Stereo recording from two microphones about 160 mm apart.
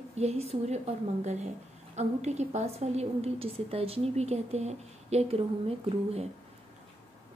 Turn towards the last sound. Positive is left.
turn(degrees=-40)  # may be behind; listen again after turning